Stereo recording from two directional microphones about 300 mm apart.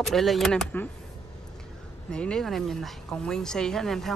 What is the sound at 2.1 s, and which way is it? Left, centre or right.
Speech, centre.